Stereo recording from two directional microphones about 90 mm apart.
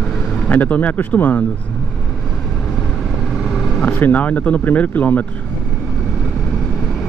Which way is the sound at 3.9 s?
20° left (ahead or behind).